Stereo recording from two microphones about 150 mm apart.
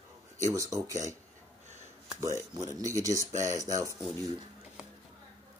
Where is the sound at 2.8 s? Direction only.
20° right (ahead or behind).